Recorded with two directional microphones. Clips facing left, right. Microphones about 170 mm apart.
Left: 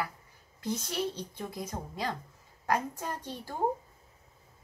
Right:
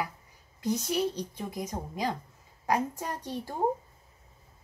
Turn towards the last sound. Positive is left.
turn(degrees=-20)  # may be behind; listen again after turning